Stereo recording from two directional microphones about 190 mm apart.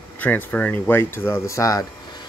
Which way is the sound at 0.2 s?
10° left (ahead or behind).